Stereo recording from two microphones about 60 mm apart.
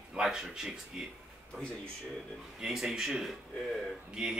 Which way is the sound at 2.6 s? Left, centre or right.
Centre.